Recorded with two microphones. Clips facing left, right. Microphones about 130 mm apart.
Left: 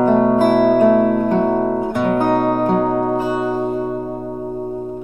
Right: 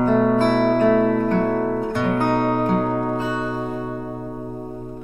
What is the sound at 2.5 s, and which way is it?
Music, 35° left (ahead or behind).